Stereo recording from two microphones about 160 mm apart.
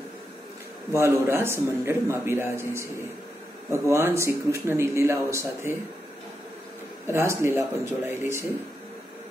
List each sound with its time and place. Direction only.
0.9 s a man's voice: 15° right (ahead or behind)
3.9 s a man's voice: 15° right (ahead or behind)
7.1 s a man's voice: 15° right (ahead or behind)